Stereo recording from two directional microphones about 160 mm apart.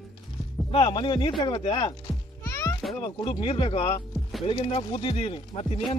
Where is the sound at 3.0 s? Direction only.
30° left (ahead or behind).